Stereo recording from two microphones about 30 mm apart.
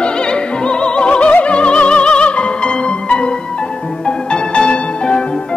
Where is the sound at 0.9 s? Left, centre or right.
Left.